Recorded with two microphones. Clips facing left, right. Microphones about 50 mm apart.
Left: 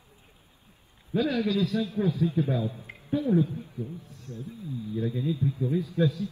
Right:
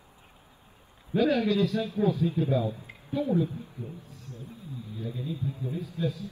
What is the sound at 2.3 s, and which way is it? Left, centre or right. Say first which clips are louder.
Speech: right 1 dB; left.